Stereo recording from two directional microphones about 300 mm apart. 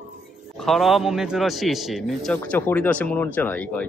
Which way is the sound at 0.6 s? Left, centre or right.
Centre.